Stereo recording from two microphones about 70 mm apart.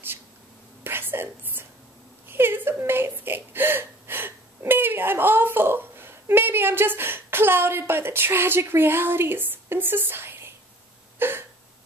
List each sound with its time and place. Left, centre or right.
0.8 s whispering: right
2.2 s speech: right
11.1 s a sound: right